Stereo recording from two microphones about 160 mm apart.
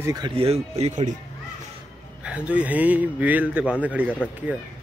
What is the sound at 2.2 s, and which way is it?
Speech, 5° right (ahead or behind).